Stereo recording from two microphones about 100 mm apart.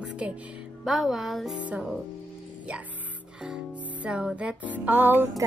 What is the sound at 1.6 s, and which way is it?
Speech, 15° right (ahead or behind).